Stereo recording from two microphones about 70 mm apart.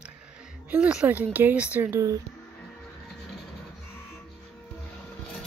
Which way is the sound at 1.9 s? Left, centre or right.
Right.